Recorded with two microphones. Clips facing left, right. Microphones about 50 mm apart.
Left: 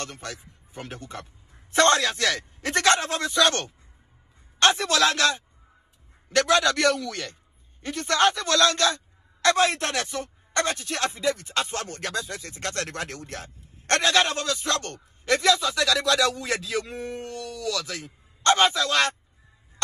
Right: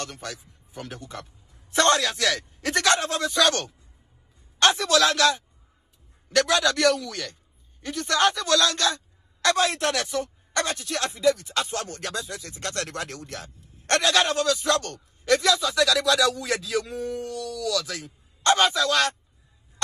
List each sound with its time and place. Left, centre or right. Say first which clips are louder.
0.0 s a man's voice: even; left